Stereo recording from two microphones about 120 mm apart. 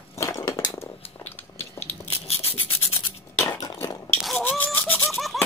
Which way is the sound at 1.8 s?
60° left (ahead or behind).